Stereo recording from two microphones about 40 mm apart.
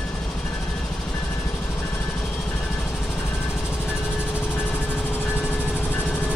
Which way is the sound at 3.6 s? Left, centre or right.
Left.